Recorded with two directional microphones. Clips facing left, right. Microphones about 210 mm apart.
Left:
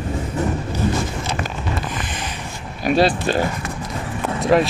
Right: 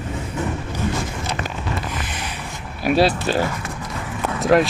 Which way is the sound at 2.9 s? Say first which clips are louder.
Even; 5° right (ahead or behind).